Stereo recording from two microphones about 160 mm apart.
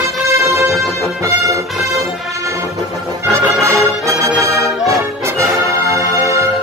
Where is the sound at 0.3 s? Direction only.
20° right (ahead or behind).